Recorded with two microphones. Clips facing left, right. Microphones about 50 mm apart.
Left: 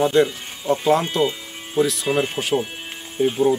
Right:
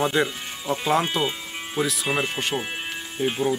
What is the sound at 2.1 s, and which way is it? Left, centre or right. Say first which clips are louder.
Speech: left 4 dB; centre.